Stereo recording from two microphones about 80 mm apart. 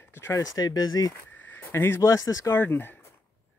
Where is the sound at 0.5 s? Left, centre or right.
Left.